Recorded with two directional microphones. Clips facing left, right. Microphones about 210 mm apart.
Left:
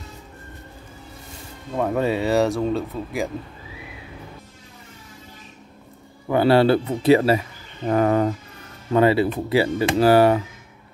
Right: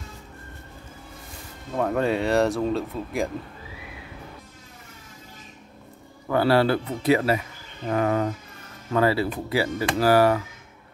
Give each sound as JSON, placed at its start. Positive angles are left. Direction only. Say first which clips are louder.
{"t": 1.8, "sound": "speech", "louder": "left 2 dB", "side_deg": 5}
{"t": 6.2, "sound": "a man's voice", "louder": "left 4 dB", "side_deg": 20}
{"t": 7.8, "sound": "speech", "louder": "left 4 dB", "side_deg": 40}
{"t": 8.9, "sound": "a man's voice", "louder": "left 5 dB", "side_deg": 20}